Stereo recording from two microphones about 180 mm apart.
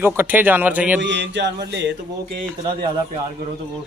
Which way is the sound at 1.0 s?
75° right (ahead or behind).